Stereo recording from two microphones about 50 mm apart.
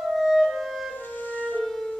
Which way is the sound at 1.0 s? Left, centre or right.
Left.